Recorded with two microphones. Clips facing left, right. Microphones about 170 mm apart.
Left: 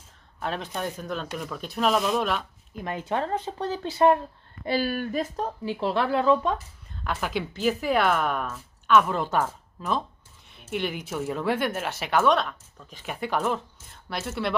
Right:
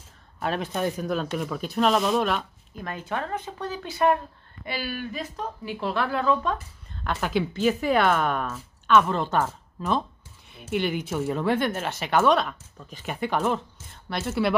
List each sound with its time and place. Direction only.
0.4 s speech: 5° right (ahead or behind)
2.8 s speech: 20° left (ahead or behind)
4.6 s speech: 45° left (ahead or behind)
5.7 s speech: 25° left (ahead or behind)
7.1 s speech: centre (ahead or behind)